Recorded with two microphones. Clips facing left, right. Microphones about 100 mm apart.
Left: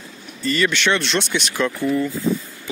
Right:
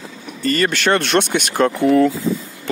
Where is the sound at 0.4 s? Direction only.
50° right (ahead or behind).